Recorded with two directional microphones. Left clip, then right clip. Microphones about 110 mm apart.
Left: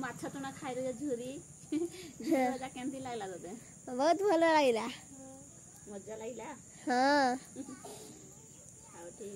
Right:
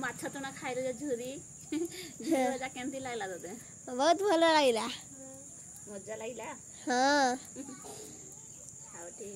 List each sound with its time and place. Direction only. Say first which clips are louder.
0.0 s speech: right 3 dB; centre (ahead or behind)
2.2 s a woman's voice: right 1 dB; 15° left (ahead or behind)
2.5 s speech: right 3 dB; 5° right (ahead or behind)
3.8 s a woman's voice: right 2 dB; 10° left (ahead or behind)
6.0 s speech: right 3 dB; 5° right (ahead or behind)
6.8 s speech: right 1 dB; 20° left (ahead or behind)